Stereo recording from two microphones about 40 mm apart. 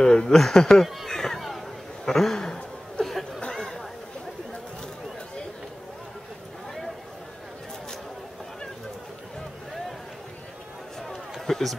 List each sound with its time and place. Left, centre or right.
0.0 s speech: centre
1.0 s a sound: centre
11.4 s run: centre